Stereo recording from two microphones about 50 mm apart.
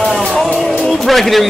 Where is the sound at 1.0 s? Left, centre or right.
Centre.